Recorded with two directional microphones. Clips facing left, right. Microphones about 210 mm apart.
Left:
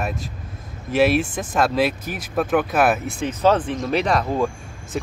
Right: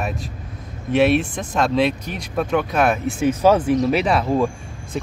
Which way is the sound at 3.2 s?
10° right (ahead or behind).